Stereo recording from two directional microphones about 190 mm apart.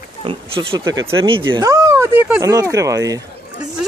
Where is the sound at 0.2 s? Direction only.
30° right (ahead or behind).